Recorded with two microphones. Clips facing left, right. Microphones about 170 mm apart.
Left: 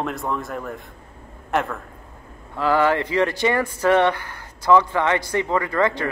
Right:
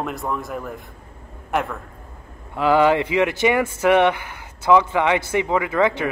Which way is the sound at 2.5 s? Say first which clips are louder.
Right 3 dB; 20° right (ahead or behind).